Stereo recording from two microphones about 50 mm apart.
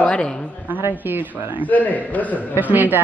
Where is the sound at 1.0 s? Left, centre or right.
Right.